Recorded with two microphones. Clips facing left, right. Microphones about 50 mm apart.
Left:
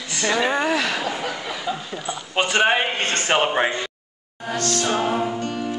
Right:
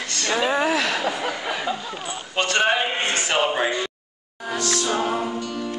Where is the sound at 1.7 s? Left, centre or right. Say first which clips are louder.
Even; centre.